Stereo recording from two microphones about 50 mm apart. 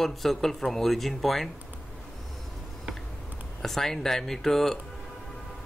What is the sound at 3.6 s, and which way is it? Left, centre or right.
Speech, centre.